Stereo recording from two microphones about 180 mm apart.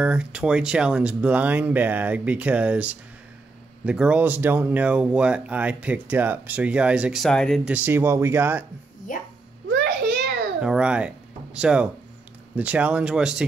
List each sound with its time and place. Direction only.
0.0 s speech: 5° right (ahead or behind)
7.7 s speech: 10° right (ahead or behind)
9.1 s a sound: 50° left (ahead or behind)
10.6 s speech: 5° right (ahead or behind)